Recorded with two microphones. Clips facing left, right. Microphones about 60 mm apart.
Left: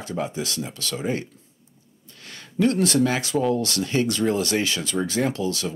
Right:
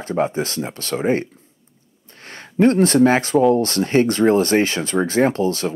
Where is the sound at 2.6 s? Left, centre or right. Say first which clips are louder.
Right 6 dB; right.